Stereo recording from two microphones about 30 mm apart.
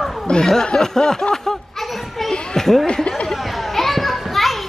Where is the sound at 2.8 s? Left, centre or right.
Left.